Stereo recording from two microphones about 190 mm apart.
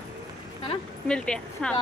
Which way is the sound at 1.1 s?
5° left (ahead or behind).